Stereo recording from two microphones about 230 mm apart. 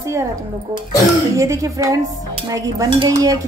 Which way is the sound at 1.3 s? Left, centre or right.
Centre.